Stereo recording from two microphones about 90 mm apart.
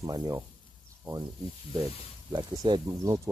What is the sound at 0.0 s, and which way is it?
Speech, 40° right (ahead or behind).